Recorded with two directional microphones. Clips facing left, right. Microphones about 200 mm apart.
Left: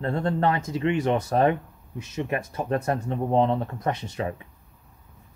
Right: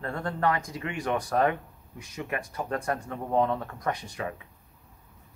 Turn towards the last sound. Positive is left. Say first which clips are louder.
# left 5 dB
turn(degrees=25)  # may be behind; listen again after turning